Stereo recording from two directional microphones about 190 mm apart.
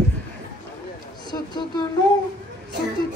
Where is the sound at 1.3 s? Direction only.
25° left (ahead or behind).